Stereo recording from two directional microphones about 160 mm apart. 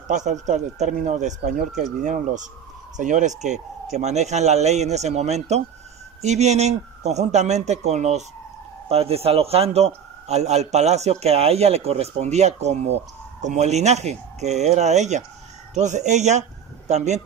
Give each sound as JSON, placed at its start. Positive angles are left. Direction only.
{"t": 0.1, "sound": "a man's voice", "side_deg": -50}